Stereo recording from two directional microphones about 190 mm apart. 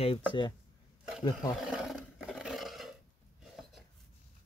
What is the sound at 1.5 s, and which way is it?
Roaring cats, centre (ahead or behind).